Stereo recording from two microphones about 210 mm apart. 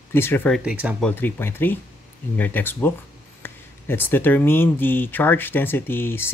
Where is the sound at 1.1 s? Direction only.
10° left (ahead or behind).